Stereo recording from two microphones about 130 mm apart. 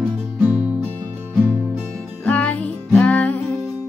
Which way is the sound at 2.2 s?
10° left (ahead or behind).